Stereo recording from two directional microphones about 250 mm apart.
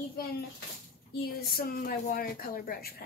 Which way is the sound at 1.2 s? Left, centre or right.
Left.